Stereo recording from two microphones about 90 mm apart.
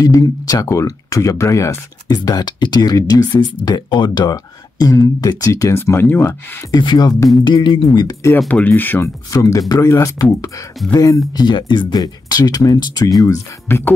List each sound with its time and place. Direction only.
0.0 s speech: 40° left (ahead or behind)
2.1 s speech: 50° left (ahead or behind); by 6.6 s 25° left (ahead or behind)
6.8 s speech: 55° left (ahead or behind)
7.4 s speech: 55° left (ahead or behind)
8.5 s speech: 20° left (ahead or behind)
9.3 s speech: 40° left (ahead or behind)
11.4 s speech: 60° left (ahead or behind); by 13.1 s 45° left (ahead or behind)
13.7 s speech: 25° left (ahead or behind)